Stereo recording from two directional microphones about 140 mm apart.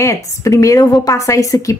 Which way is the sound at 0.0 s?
20° left (ahead or behind).